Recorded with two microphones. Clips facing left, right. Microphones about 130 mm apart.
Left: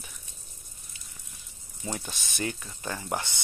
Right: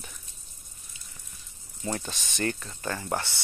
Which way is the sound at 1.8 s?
5° left (ahead or behind).